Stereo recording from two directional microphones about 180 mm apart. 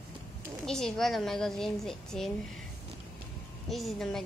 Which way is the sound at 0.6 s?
5° left (ahead or behind).